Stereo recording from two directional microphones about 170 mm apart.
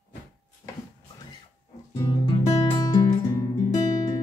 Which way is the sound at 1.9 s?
25° left (ahead or behind).